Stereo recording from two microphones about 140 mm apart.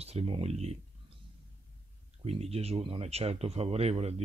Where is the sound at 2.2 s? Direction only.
45° right (ahead or behind).